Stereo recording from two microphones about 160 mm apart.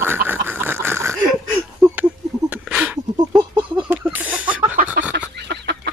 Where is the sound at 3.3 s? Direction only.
30° right (ahead or behind).